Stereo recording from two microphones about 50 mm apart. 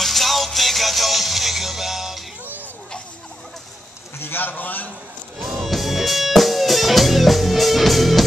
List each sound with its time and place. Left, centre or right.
0.0 s music: centre
4.2 s a man's voice: left
5.4 s music: centre